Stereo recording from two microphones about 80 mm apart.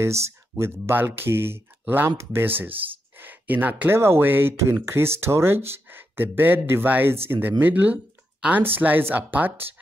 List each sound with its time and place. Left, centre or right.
0.0 s speech: right